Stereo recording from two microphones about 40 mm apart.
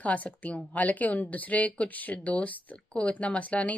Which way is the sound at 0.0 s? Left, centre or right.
Left.